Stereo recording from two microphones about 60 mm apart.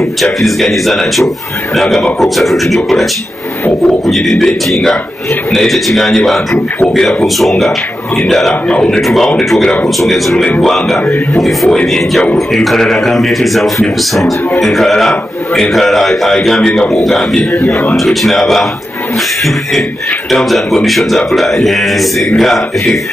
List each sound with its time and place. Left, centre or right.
0.2 s a man's voice: centre
8.6 s a man's voice: centre
9.0 s a man's voice: centre
20.2 s a man's voice: centre